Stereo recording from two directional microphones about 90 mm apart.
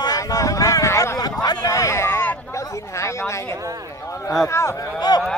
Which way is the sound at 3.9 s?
35° left (ahead or behind).